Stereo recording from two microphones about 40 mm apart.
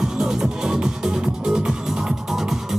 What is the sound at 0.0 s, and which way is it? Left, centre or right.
Music, centre.